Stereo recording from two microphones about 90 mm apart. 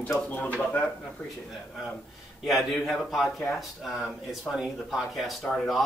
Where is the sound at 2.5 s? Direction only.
Centre (ahead or behind).